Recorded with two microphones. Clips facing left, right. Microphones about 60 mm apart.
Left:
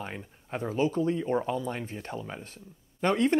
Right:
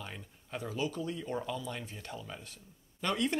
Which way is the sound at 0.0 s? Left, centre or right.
Left.